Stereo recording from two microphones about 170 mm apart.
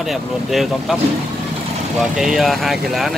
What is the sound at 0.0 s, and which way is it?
Speech, centre (ahead or behind).